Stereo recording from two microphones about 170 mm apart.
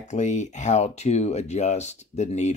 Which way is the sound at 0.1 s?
45° left (ahead or behind).